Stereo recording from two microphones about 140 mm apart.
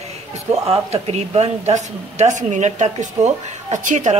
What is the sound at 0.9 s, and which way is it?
A woman's voice, 50° right (ahead or behind).